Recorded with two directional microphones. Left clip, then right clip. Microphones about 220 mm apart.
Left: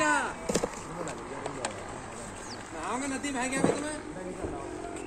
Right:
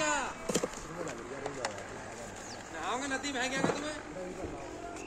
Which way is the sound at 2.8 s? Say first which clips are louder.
Left 1 dB; 50° left (ahead or behind).